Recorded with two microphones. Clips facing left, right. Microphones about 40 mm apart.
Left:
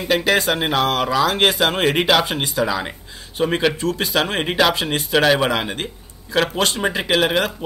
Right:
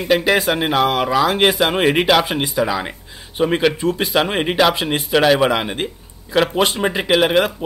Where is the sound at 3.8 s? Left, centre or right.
Centre.